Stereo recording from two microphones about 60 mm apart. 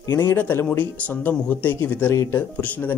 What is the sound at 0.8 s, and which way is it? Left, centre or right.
Speech, left.